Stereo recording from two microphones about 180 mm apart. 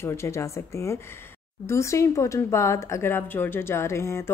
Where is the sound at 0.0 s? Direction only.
15° left (ahead or behind).